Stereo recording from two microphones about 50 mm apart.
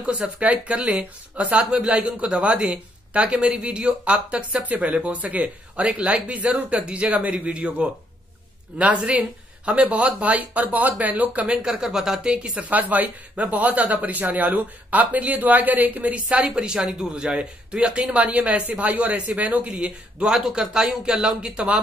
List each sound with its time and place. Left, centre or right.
0.0 s speech: right
8.7 s speech: right
11.4 s speech: centre
12.5 s speech: right
18.1 s speech: right
19.8 s speech: centre